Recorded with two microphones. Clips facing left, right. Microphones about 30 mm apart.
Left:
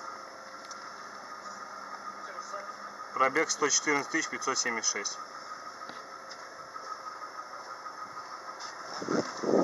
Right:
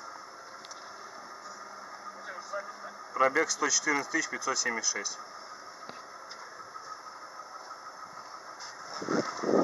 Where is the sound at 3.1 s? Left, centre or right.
Centre.